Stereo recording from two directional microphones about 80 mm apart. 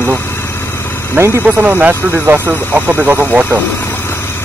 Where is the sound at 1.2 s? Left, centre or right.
Right.